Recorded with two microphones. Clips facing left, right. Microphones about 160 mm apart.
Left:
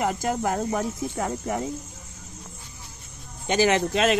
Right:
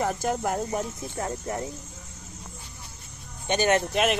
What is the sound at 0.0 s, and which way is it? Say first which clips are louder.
Speech: left 1 dB; 90° left.